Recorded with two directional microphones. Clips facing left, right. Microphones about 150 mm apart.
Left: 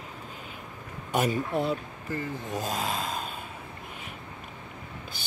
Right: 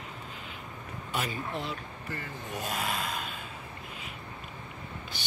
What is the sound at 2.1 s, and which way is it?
Speech, 25° left (ahead or behind).